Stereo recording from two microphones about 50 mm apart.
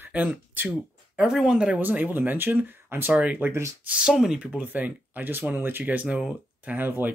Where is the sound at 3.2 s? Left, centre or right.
Right.